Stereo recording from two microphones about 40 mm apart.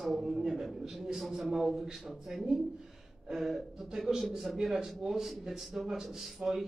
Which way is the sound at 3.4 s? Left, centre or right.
Centre.